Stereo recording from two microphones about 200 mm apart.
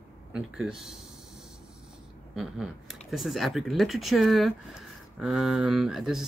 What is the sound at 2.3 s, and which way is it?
Speech, centre (ahead or behind).